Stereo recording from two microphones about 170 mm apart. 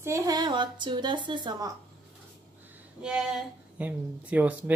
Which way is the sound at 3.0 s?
5° right (ahead or behind).